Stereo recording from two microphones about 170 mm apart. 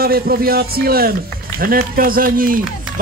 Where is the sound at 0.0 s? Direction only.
60° right (ahead or behind).